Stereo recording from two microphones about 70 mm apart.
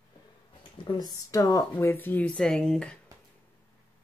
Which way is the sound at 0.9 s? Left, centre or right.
Left.